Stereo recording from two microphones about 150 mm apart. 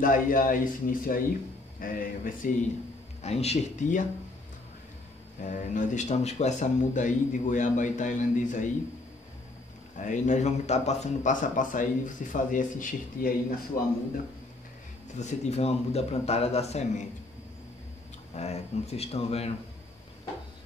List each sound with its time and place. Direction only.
0.0 s speech: 65° left (ahead or behind)
3.2 s a man's voice: 45° left (ahead or behind)
5.4 s speech: 60° left (ahead or behind)
9.9 s speech: 55° left (ahead or behind); by 13.7 s 70° left (ahead or behind)
15.1 s a man's voice: 50° left (ahead or behind)
18.3 s a man's voice: 45° left (ahead or behind)